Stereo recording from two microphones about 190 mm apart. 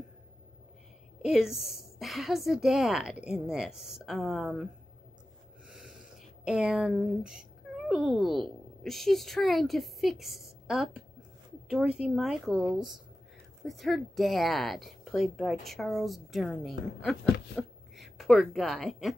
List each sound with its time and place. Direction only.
1.2 s a woman's voice: centre (ahead or behind)
6.4 s a woman's voice: 5° right (ahead or behind)